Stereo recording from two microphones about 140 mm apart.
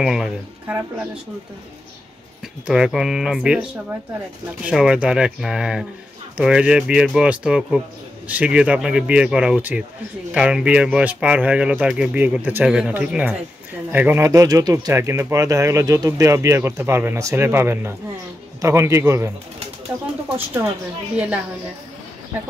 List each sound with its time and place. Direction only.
0.0 s speech: 5° right (ahead or behind)
2.6 s speech: 5° right (ahead or behind)
4.6 s speech: 5° right (ahead or behind)